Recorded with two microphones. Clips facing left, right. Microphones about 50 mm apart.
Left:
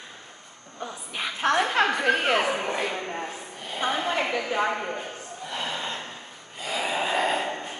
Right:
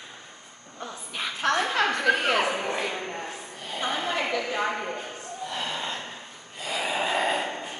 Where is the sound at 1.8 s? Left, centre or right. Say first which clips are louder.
Left 1 dB; left.